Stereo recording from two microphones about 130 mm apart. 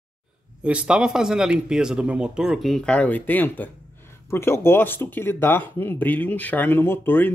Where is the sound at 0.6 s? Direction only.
10° right (ahead or behind).